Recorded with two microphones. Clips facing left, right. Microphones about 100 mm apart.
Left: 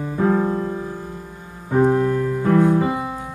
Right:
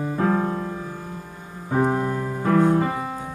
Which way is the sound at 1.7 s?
15° right (ahead or behind).